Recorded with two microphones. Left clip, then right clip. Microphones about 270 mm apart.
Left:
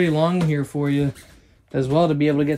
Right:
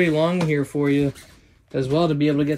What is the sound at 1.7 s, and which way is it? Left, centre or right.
Speech, left.